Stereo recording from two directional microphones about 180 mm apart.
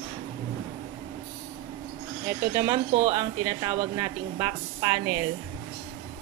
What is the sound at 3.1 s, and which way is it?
A woman's voice, 20° right (ahead or behind).